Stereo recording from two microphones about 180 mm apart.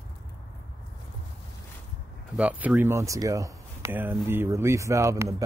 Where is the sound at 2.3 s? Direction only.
5° right (ahead or behind).